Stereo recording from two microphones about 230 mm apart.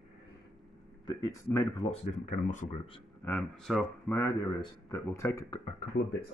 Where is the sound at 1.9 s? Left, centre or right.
Left.